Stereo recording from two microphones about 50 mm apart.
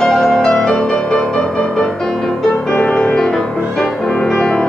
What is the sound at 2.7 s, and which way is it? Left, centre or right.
Music, left.